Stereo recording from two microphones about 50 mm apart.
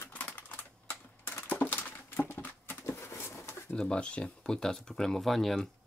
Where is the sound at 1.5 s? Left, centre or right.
Left.